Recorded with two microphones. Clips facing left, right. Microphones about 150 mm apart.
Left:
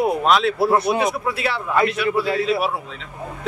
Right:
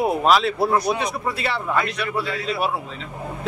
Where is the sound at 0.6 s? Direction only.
30° left (ahead or behind).